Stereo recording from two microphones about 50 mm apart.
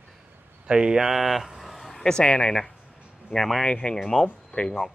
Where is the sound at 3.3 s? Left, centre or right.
Centre.